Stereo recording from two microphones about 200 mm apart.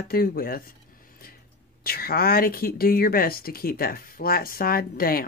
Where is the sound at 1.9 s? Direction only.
50° left (ahead or behind).